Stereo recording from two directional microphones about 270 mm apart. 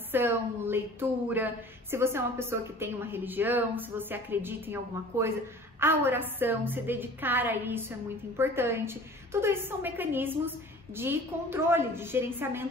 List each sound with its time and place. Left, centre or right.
0.1 s speech: centre